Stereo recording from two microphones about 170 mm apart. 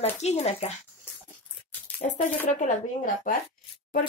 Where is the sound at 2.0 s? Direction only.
50° left (ahead or behind).